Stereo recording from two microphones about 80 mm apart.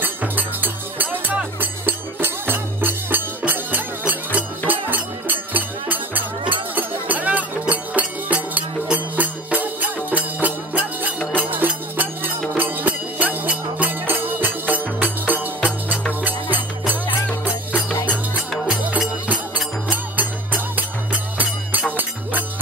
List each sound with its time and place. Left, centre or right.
0.0 s music: right
18.7 s music: centre